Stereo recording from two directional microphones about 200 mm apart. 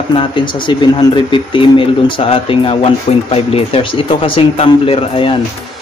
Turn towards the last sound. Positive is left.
turn(degrees=25)  # may be behind; listen again after turning